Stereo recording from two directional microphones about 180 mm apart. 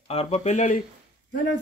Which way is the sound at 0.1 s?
35° left (ahead or behind).